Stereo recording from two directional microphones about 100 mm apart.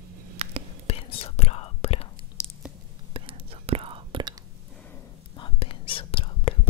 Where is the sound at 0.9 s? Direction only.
65° left (ahead or behind); by 2.1 s 85° left.